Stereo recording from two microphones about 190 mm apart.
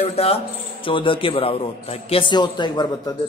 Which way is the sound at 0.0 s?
30° left (ahead or behind).